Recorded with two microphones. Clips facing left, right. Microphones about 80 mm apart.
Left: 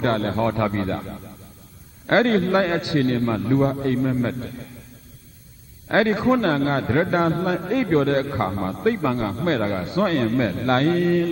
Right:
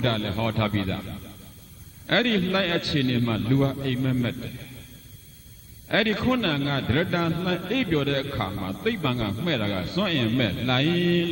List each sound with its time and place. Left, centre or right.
0.0 s a man's voice: left
5.9 s a man's voice: left